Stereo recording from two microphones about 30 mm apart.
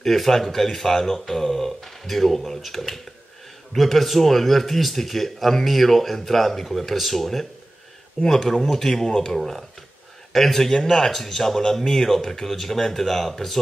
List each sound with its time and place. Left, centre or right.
0.0 s speech: centre
8.2 s speech: centre
10.3 s speech: centre